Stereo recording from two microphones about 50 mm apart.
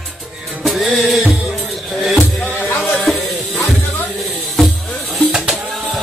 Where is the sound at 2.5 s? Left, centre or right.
Left.